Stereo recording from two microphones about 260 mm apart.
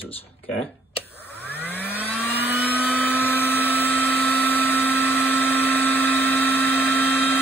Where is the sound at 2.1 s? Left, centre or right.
Centre.